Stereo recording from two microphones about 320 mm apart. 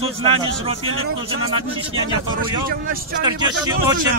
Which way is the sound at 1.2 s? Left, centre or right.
Centre.